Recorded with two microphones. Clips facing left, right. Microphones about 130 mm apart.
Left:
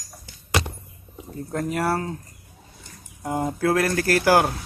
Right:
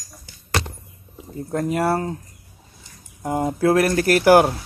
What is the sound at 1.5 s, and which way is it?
Speech, 15° right (ahead or behind).